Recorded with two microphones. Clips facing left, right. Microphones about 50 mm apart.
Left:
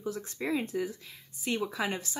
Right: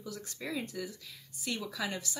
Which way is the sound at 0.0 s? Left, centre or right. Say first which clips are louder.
Left 7 dB; left.